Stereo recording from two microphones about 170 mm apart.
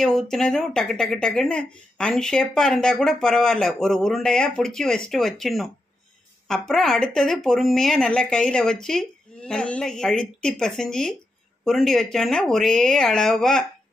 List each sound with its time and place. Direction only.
0.0 s speech: centre (ahead or behind)